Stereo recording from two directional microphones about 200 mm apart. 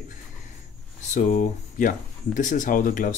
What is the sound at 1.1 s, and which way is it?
Speech, 40° left (ahead or behind).